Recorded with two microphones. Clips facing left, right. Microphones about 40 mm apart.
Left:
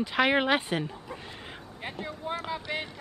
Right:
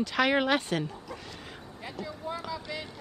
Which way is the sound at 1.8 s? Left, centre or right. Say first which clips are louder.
Left 2 dB; left.